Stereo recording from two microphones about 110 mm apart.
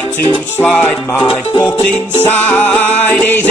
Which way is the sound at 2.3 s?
20° left (ahead or behind).